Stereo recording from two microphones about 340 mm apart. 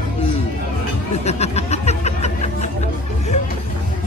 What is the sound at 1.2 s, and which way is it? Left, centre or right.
Music, centre.